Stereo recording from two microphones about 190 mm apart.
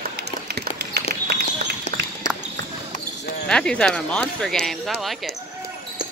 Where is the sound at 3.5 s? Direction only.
5° left (ahead or behind).